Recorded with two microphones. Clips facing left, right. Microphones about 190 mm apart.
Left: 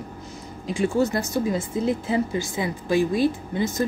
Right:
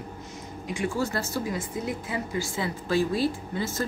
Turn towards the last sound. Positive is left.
turn(degrees=15)  # may be behind; listen again after turning